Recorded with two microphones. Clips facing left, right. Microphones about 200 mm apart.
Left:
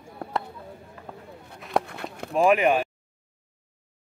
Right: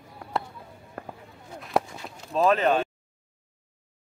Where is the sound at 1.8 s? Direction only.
60° left (ahead or behind).